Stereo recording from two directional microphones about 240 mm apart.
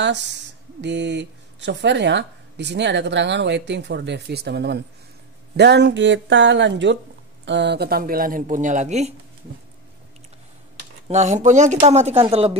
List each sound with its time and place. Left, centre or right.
0.0 s speech: right
11.1 s speech: right